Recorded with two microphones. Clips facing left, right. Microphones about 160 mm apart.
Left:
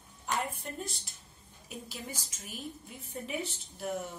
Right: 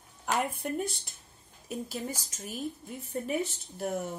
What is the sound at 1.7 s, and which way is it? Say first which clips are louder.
Speech: right 7 dB; 45° right (ahead or behind).